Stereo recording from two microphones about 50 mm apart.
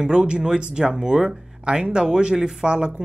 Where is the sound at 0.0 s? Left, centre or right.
Centre.